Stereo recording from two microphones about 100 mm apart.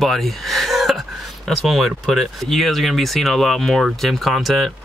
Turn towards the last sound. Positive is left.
turn(degrees=0)  # may be behind; listen again after turning